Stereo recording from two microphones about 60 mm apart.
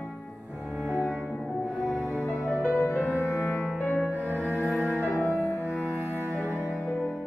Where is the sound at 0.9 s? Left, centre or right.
Right.